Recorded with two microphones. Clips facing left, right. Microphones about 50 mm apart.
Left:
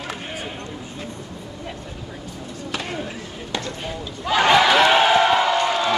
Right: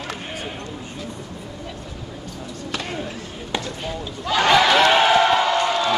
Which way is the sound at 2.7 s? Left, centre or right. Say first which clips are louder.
Even; centre.